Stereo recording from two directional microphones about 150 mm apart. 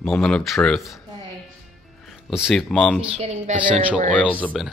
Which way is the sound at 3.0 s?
40° right (ahead or behind).